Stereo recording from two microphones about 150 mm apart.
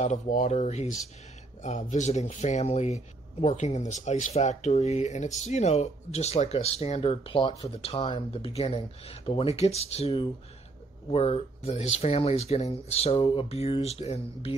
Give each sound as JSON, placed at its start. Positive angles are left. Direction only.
{"t": 0.0, "sound": "speech", "side_deg": 55}